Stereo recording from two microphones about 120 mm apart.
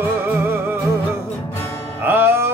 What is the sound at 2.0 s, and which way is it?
Music, 20° right (ahead or behind).